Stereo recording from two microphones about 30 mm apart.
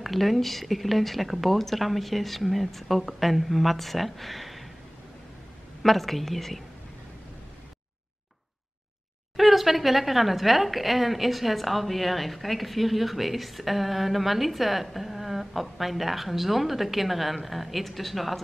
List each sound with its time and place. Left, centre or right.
0.0 s speech: centre
5.8 s speech: centre
9.4 s speech: centre